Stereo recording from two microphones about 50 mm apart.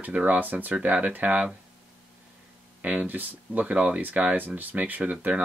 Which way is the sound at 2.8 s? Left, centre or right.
Right.